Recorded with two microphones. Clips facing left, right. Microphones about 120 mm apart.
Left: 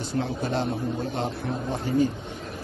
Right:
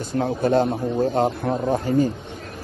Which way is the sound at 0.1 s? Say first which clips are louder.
Right 8 dB; 50° right (ahead or behind).